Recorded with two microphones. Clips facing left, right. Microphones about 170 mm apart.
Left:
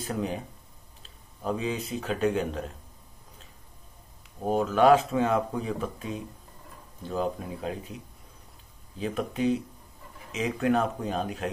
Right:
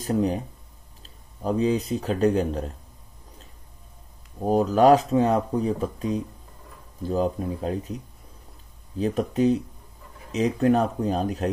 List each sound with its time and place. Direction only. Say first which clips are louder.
0.0 s speech: right 7 dB; 40° right (ahead or behind)
4.5 s speech: right 3 dB; 35° right (ahead or behind)